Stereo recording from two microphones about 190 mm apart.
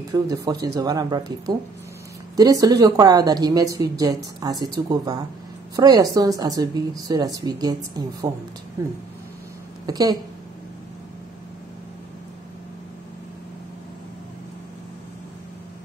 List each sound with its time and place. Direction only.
0.1 s speech: 20° right (ahead or behind)
9.8 s speech: 20° right (ahead or behind)